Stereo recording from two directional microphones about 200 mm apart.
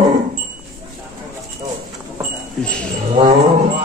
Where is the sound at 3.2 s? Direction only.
30° right (ahead or behind).